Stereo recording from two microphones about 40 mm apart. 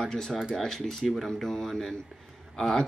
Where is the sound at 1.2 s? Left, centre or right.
Centre.